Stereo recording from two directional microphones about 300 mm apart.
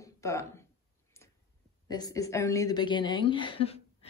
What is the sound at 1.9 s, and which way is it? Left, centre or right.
A woman's voice, centre.